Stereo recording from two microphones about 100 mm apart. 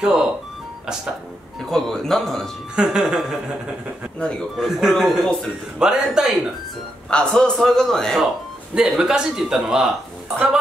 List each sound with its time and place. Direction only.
0.0 s speech: 5° right (ahead or behind)
1.7 s a man's voice: 5° left (ahead or behind)
2.7 s a man's voice: 5° right (ahead or behind)
4.2 s speech: 10° left (ahead or behind)
4.6 s a man's voice: centre (ahead or behind)
7.1 s a man's voice: 10° left (ahead or behind)